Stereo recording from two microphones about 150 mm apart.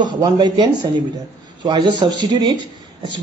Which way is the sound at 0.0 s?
30° right (ahead or behind).